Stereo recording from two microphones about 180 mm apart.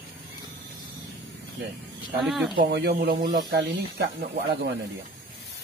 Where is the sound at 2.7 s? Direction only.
60° right (ahead or behind).